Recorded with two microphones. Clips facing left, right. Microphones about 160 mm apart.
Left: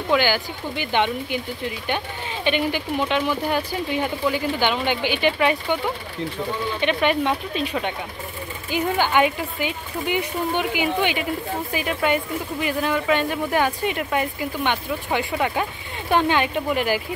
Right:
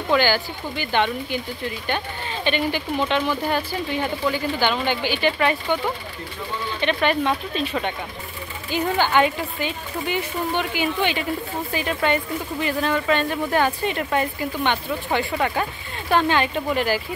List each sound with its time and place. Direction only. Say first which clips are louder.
0.1 s speech: right 1 dB; 15° left (ahead or behind)
6.8 s speech: even; 15° left (ahead or behind)